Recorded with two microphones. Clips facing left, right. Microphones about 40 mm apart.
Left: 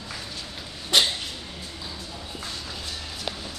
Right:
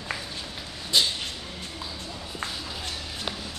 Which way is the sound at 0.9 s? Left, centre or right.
Left.